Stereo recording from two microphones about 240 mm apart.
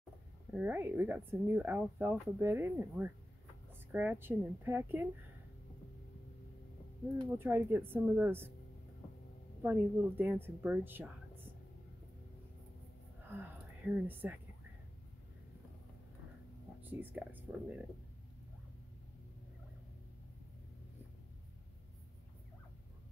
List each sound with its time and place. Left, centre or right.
0.5 s speech: centre
7.2 s speech: centre
9.6 s speech: centre
13.3 s speech: centre
16.8 s speech: centre